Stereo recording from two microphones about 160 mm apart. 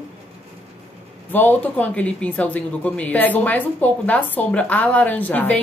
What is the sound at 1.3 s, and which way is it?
A woman's voice, 10° left (ahead or behind).